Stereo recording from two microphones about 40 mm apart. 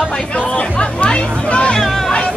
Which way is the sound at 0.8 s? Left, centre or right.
Left.